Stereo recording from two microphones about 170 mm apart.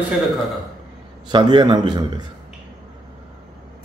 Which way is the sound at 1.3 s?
25° right (ahead or behind).